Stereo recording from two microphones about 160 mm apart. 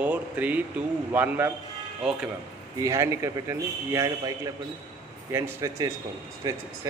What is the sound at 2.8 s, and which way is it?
Speech, 20° right (ahead or behind).